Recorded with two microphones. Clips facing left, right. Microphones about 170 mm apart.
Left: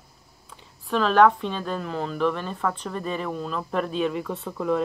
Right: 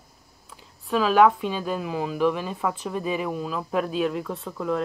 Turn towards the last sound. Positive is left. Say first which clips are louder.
# left 2 dB
turn(degrees=0)  # may be behind; listen again after turning